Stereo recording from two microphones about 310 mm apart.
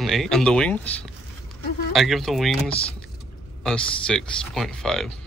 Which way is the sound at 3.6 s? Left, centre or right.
Centre.